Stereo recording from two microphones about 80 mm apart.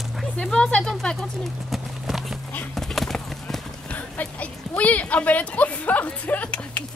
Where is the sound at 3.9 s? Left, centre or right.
Centre.